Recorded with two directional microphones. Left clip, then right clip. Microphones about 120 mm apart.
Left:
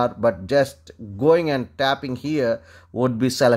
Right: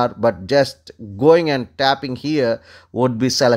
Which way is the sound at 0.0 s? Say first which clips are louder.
Right 3 dB; 20° right (ahead or behind).